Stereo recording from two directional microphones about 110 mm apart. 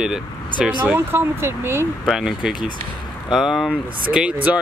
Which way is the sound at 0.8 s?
20° right (ahead or behind).